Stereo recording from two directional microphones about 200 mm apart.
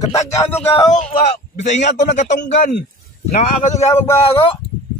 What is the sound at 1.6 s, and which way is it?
Speech, 35° left (ahead or behind).